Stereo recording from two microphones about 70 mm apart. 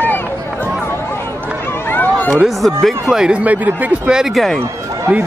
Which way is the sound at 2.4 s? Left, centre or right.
Centre.